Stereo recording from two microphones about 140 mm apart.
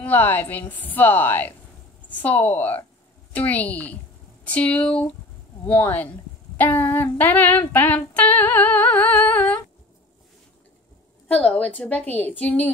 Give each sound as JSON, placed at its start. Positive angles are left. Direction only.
{"t": 0.0, "sound": "a woman's voice", "side_deg": 15}
{"t": 11.2, "sound": "a woman's voice", "side_deg": 10}